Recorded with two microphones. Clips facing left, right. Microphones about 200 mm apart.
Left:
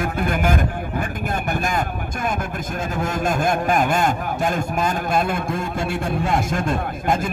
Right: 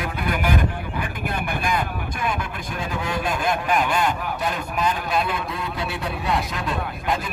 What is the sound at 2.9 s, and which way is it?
A man's voice, 45° left (ahead or behind).